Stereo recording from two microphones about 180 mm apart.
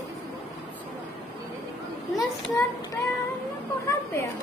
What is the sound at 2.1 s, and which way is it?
Speech, 20° left (ahead or behind).